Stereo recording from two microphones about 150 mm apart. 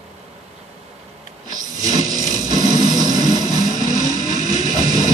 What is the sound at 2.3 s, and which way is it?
Vehicle, 25° right (ahead or behind).